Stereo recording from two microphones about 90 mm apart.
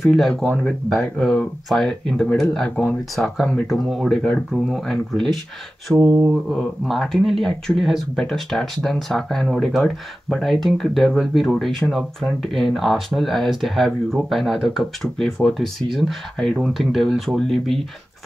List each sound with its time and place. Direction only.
0.0 s speech: 5° left (ahead or behind)
5.9 s mantra: 5° right (ahead or behind)
6.5 s speech: 5° left (ahead or behind)